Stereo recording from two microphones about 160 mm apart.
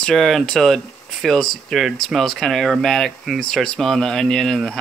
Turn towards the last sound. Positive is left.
turn(degrees=0)  # may be behind; listen again after turning